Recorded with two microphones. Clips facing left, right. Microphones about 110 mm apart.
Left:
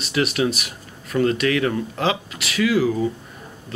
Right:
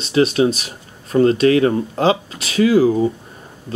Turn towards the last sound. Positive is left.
turn(degrees=-30)  # may be behind; listen again after turning